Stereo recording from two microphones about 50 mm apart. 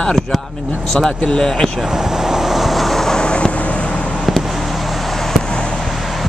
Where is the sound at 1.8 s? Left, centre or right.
Centre; by 4.1 s left.